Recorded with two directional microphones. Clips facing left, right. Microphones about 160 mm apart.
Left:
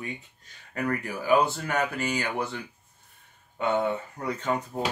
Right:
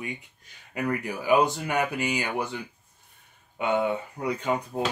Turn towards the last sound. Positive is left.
turn(degrees=-10)  # may be behind; listen again after turning